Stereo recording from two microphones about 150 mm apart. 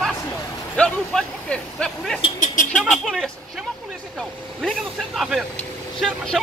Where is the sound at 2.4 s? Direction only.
60° left (ahead or behind).